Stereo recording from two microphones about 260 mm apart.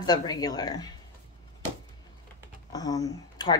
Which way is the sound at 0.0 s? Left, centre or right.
Centre.